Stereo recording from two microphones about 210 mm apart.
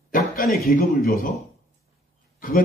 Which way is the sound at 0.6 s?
45° left (ahead or behind).